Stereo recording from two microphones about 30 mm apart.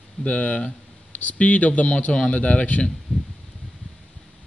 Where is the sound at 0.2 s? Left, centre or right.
Left.